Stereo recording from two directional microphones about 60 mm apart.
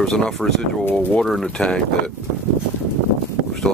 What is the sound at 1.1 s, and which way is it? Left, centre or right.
Speech, centre.